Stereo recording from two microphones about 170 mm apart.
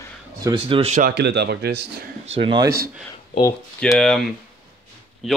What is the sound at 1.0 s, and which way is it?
Speech, 70° right (ahead or behind).